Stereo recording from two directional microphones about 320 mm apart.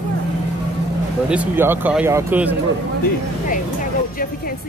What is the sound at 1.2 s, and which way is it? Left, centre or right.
Speech, centre.